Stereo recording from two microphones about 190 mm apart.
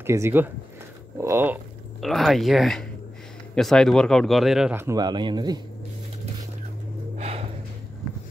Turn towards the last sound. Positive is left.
turn(degrees=-35)  # may be behind; listen again after turning